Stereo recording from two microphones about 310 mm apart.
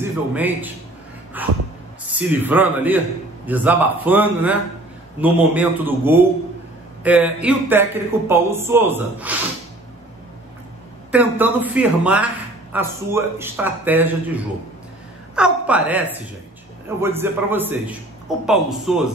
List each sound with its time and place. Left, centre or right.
0.0 s a man's voice: centre
11.1 s a man's voice: centre
17.0 s a man's voice: centre